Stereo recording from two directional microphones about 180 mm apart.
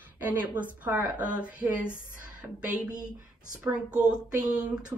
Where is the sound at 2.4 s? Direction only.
10° right (ahead or behind).